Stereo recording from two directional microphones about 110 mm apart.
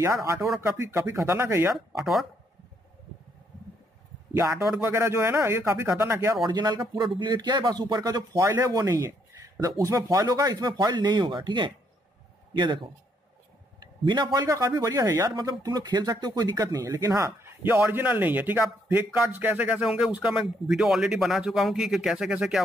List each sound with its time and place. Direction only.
0.0 s speech: 25° right (ahead or behind)
4.8 s speech: 25° right (ahead or behind)
6.4 s speech: 40° right (ahead or behind)
13.7 s a sound: 40° right (ahead or behind)
14.4 s speech: 30° right (ahead or behind); by 22.6 s 5° right (ahead or behind)